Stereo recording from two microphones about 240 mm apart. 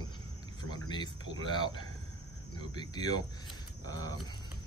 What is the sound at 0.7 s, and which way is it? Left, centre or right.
Speech, centre.